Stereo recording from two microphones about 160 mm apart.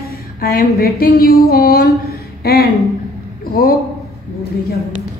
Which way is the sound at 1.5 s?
70° left (ahead or behind).